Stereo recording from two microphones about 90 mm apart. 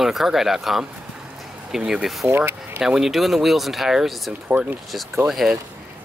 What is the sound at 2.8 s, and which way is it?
Speech, 5° right (ahead or behind).